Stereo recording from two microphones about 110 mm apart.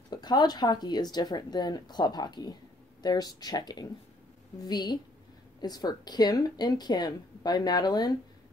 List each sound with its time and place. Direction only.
0.1 s speech: 40° left (ahead or behind)